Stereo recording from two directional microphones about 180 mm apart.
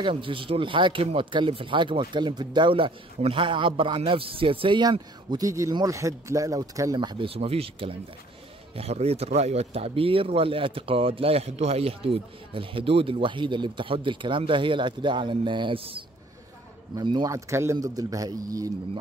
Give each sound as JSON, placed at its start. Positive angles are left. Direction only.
{"t": 0.0, "sound": "speech", "side_deg": -30}